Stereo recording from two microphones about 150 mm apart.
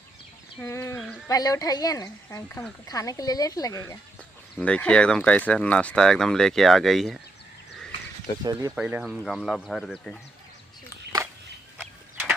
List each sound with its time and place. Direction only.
0.6 s speech: 20° left (ahead or behind)
0.9 s a sound: 5° left (ahead or behind)
1.2 s speech: 25° left (ahead or behind)
4.6 s speech: 5° left (ahead or behind)
8.5 s speech: 25° right (ahead or behind)
8.7 s speech: 5° right (ahead or behind)